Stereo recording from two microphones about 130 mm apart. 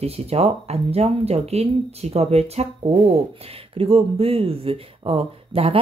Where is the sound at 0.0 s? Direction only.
55° right (ahead or behind).